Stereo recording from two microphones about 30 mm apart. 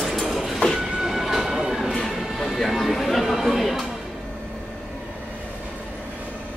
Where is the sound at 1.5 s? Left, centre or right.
Centre.